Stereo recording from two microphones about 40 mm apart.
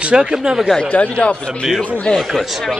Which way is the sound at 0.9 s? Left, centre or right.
Left.